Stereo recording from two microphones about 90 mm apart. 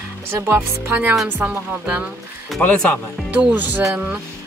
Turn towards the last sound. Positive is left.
turn(degrees=-20)  # may be behind; listen again after turning